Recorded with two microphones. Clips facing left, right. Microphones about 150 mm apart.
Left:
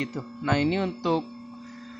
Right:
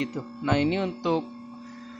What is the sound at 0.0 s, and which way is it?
Speech, 20° right (ahead or behind).